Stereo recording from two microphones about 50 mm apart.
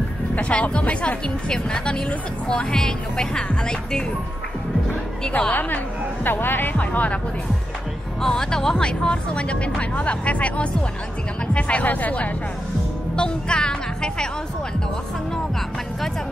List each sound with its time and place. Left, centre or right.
0.4 s speech: left
5.5 s a woman's voice: left
6.8 s speech: left
8.2 s speech: centre; by 12.3 s left
13.1 s speech: centre